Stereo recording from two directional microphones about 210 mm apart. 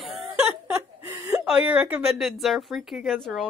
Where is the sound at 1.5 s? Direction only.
5° right (ahead or behind).